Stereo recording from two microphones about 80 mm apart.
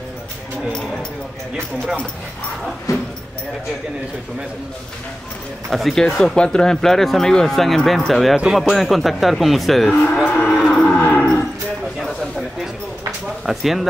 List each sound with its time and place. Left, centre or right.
2.9 s speech: left
5.7 s speech: centre
10.2 s cattle: centre
10.7 s a sound: centre
12.0 s a sound: centre
13.5 s speech: centre